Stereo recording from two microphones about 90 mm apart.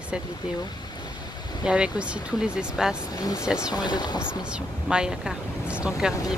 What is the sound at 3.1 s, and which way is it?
Speech, 45° left (ahead or behind).